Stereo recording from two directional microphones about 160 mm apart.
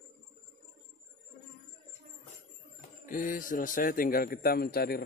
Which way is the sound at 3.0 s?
55° left (ahead or behind).